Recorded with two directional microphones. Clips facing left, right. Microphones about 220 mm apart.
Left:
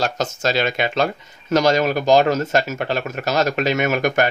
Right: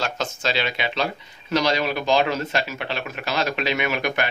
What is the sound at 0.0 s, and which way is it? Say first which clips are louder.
Speech: left 5 dB; 45° left (ahead or behind).